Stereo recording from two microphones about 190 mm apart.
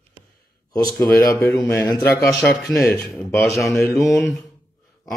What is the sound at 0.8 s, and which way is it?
A man's voice, 20° left (ahead or behind).